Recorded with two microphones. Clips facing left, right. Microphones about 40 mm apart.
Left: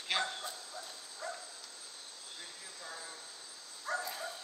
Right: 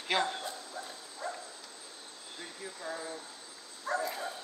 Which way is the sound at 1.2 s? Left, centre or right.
Right.